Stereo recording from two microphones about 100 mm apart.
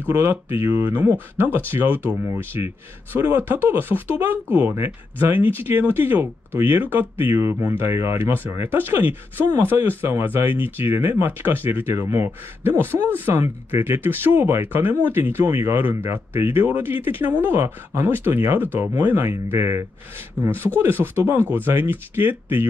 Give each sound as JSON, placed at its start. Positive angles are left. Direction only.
{"t": 0.1, "sound": "speech", "side_deg": -25}